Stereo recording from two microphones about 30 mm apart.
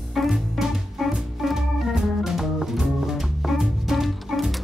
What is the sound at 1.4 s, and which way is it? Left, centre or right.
Organ, centre.